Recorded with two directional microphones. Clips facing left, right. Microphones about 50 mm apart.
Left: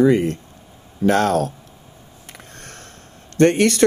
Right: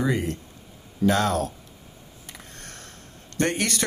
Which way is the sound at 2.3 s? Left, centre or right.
Left.